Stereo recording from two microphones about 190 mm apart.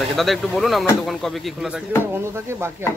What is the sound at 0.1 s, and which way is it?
Speech, centre (ahead or behind).